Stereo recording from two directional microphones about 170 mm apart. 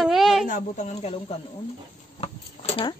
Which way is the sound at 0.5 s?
45° left (ahead or behind).